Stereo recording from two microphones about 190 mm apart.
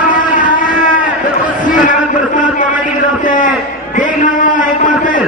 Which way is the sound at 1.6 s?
45° left (ahead or behind).